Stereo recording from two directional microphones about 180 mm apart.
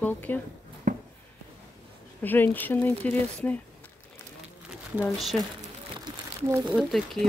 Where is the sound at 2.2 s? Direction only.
10° left (ahead or behind).